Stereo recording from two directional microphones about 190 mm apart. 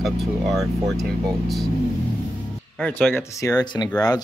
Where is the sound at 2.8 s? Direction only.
5° left (ahead or behind); by 3.9 s 20° left (ahead or behind).